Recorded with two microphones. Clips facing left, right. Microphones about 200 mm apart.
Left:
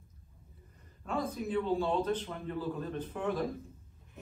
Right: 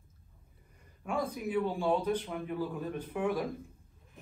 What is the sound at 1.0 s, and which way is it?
A man's voice, 10° right (ahead or behind).